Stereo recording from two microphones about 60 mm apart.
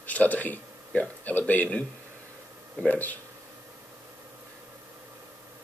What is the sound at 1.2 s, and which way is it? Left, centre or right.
Speech, left.